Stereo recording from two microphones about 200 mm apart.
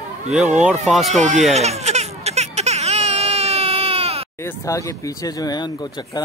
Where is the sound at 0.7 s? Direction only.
Centre (ahead or behind).